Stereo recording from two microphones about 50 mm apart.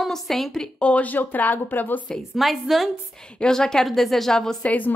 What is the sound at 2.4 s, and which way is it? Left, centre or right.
Speech, centre.